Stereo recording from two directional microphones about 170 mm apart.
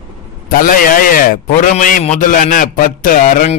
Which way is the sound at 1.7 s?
45° left (ahead or behind).